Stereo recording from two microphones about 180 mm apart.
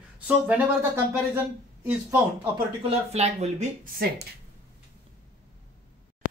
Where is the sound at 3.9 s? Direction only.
65° right (ahead or behind).